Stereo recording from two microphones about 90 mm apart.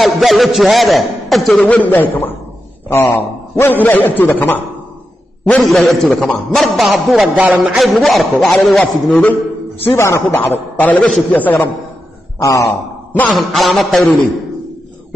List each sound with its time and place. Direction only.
0.0 s a man's voice: centre (ahead or behind)
1.6 s a man's voice: 15° left (ahead or behind)
5.5 s a man's voice: centre (ahead or behind)
7.3 s speech: 15° right (ahead or behind)
7.8 s a man's voice: centre (ahead or behind)
9.1 s a man's voice: 20° left (ahead or behind)
9.8 s a man's voice: 30° left (ahead or behind)
13.3 s a man's voice: centre (ahead or behind)